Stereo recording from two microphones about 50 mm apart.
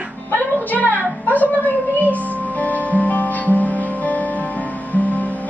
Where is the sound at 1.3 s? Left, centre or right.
Left.